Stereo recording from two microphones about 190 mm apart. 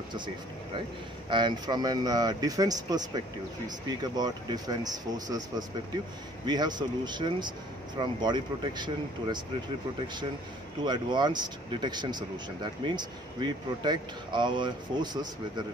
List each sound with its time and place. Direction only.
1.3 s speech: 25° right (ahead or behind)
4.0 s speech: 20° right (ahead or behind)
10.8 s speech: 25° right (ahead or behind)